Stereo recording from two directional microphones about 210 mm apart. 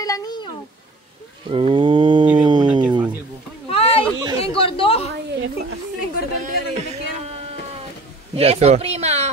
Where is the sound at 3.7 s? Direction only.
30° left (ahead or behind).